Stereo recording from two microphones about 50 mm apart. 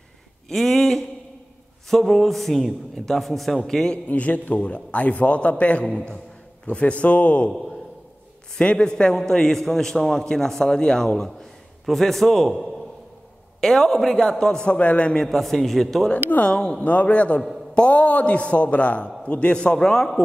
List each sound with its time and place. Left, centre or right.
0.5 s a man's voice: centre
4.1 s a man's voice: left
8.5 s a man's voice: centre
14.6 s a man's voice: left
15.2 s a man's voice: centre
16.4 s a man's voice: centre
16.8 s a man's voice: left; by 20.1 s centre